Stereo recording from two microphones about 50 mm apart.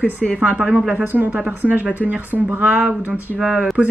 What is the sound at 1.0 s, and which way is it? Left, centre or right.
A woman's voice, right.